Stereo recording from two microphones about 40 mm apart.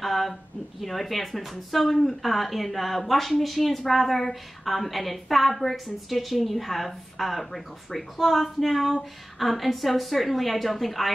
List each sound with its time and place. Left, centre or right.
0.0 s speech: centre